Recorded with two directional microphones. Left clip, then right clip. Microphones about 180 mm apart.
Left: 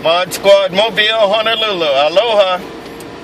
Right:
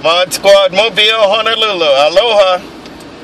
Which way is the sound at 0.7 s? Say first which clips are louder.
Right 2 dB; 25° right (ahead or behind).